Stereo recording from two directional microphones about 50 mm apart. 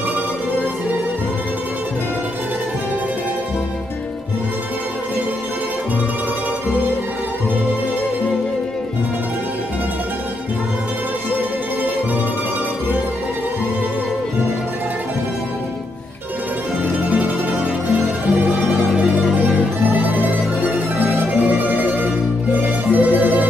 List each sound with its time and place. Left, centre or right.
17.0 s music: right
19.9 s music: right